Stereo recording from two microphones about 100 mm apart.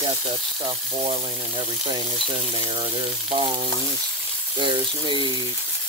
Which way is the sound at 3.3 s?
60° right (ahead or behind).